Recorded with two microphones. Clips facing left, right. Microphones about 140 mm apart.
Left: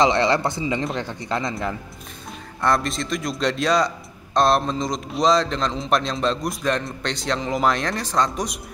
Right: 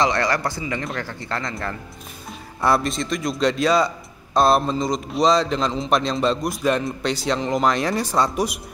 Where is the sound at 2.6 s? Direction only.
5° right (ahead or behind).